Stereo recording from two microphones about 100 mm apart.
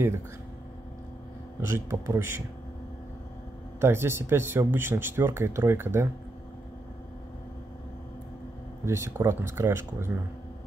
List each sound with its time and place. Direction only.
1.6 s speech: 30° right (ahead or behind)
3.8 s speech: 25° right (ahead or behind)
8.8 s speech: 25° right (ahead or behind)